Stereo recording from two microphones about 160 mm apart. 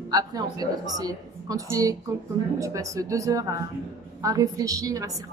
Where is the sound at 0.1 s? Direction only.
25° right (ahead or behind).